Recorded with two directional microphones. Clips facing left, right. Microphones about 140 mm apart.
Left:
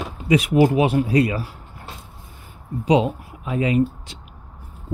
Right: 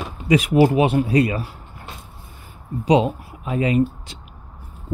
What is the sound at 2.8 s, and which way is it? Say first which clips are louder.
Speech: right 1 dB; 35° right (ahead or behind).